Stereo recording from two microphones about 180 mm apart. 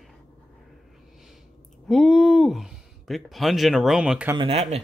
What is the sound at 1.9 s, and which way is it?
Speech, centre (ahead or behind).